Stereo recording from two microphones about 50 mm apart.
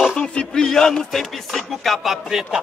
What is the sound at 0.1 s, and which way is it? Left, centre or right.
Speech, left.